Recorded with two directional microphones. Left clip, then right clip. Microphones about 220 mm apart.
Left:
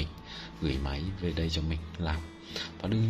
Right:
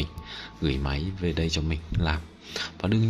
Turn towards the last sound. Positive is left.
turn(degrees=-25)  # may be behind; listen again after turning